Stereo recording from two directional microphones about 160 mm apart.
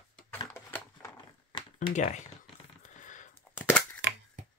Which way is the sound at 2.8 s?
50° left (ahead or behind).